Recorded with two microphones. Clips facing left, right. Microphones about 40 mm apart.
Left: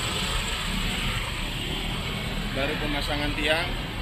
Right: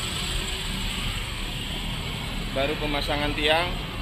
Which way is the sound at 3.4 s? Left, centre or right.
Right.